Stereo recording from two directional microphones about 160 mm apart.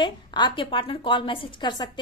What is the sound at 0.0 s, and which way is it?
A woman's voice, 30° left (ahead or behind).